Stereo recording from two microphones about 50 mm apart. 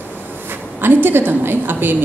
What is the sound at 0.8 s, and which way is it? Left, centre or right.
A woman's voice, right.